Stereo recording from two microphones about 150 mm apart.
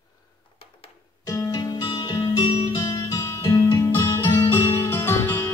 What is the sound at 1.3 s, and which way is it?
Music, 25° left (ahead or behind).